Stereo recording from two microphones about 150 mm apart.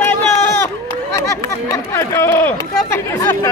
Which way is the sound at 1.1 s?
25° left (ahead or behind).